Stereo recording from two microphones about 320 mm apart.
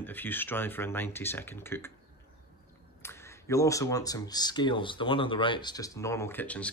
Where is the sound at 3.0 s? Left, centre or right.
Centre.